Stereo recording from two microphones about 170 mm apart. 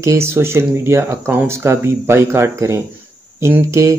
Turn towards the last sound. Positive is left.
turn(degrees=-15)  # may be behind; listen again after turning